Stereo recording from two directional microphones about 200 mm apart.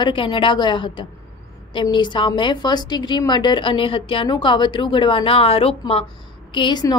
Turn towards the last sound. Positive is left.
turn(degrees=20)  # may be behind; listen again after turning